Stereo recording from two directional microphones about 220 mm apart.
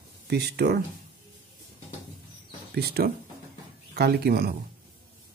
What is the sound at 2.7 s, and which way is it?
Speech, 45° right (ahead or behind).